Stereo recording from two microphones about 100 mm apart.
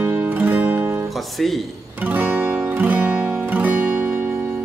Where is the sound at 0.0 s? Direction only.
20° right (ahead or behind).